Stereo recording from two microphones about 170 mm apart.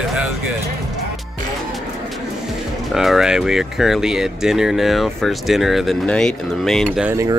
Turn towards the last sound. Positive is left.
turn(degrees=-15)  # may be behind; listen again after turning